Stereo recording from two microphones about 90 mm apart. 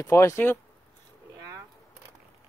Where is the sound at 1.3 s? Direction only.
40° right (ahead or behind).